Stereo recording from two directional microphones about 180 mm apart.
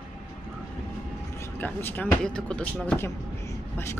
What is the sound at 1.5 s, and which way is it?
Speech, 10° left (ahead or behind).